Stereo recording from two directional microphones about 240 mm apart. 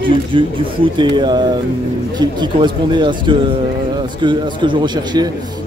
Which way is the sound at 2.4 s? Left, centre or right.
Centre.